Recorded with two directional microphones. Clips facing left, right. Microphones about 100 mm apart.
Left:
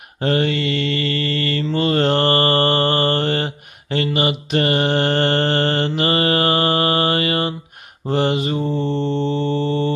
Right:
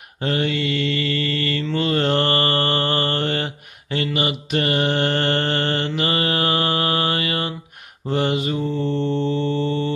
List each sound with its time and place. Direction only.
0.2 s mantra: 45° left (ahead or behind)